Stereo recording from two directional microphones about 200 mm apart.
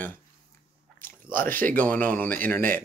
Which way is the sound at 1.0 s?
10° left (ahead or behind).